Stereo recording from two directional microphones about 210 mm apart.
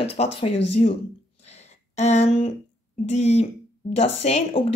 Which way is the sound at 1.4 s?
30° left (ahead or behind).